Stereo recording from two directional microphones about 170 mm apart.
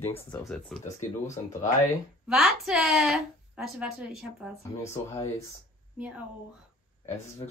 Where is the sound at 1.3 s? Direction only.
45° left (ahead or behind).